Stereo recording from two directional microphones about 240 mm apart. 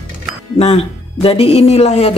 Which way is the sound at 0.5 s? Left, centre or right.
Left.